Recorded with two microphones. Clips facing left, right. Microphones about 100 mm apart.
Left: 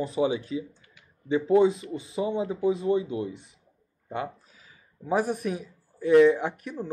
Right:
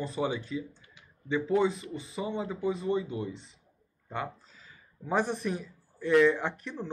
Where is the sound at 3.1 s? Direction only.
15° left (ahead or behind).